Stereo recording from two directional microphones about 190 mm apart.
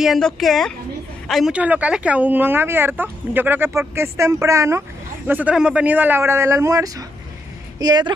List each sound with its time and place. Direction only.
0.0 s a woman's voice: centre (ahead or behind); by 8.1 s 20° right (ahead or behind)